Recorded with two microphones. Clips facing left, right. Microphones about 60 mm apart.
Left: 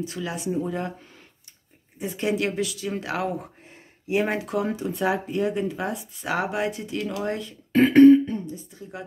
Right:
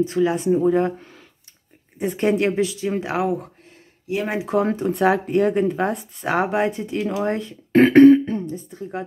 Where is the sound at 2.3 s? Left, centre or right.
Right.